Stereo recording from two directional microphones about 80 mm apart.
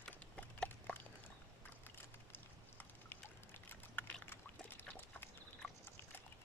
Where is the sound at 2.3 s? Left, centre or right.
Left.